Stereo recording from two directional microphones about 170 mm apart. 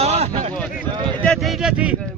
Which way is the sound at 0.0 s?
40° right (ahead or behind).